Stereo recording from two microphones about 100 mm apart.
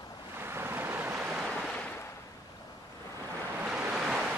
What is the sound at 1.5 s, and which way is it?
Waves, 5° left (ahead or behind).